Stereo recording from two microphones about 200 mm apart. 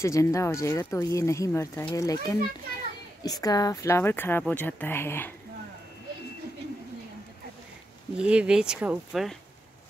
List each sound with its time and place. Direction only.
0.0 s speech: 15° left (ahead or behind)
8.2 s speech: 5° right (ahead or behind)